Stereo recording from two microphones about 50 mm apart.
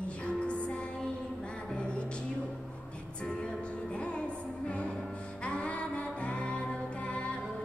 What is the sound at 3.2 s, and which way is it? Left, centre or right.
Music, centre.